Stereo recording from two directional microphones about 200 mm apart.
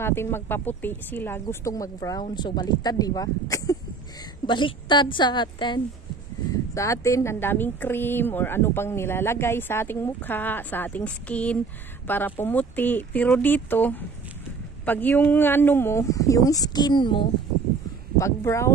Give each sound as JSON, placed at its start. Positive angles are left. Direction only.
{"t": 0.0, "sound": "speech", "side_deg": 10}